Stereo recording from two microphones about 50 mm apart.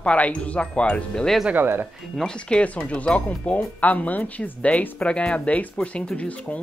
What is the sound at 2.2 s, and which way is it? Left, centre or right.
Speech, centre.